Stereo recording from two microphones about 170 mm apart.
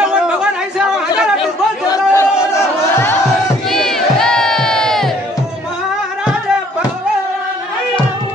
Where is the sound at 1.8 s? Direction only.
20° left (ahead or behind).